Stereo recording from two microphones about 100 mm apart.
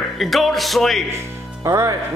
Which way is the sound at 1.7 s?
25° right (ahead or behind).